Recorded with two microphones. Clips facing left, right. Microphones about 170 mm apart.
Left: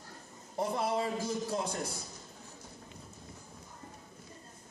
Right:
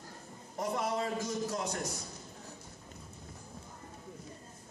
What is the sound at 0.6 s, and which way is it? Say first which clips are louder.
A man's voice: left 2 dB; 30° left (ahead or behind).